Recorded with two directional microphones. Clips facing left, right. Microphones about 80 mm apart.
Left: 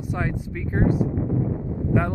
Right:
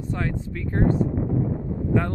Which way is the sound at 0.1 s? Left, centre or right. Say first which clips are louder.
Left 1 dB; centre.